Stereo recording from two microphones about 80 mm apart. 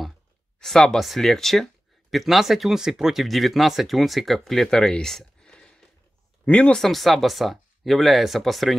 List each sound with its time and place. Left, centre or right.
0.6 s speech: centre
6.8 s speech: centre